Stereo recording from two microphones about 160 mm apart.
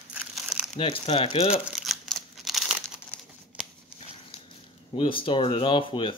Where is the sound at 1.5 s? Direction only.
5° right (ahead or behind).